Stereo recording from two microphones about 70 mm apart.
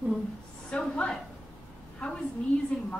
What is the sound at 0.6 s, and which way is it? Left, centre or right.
Speech, centre.